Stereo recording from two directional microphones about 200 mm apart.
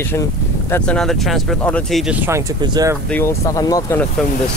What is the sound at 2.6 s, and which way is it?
Speech, 20° right (ahead or behind).